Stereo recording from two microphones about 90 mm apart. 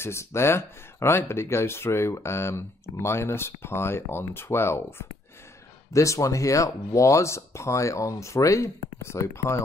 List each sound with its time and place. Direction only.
0.0 s speech: 30° left (ahead or behind)